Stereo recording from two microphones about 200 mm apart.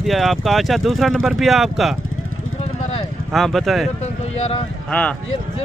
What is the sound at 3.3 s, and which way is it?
Speech, centre (ahead or behind).